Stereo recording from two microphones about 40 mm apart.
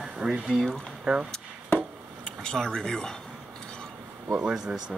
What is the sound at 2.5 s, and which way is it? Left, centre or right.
Speech, centre.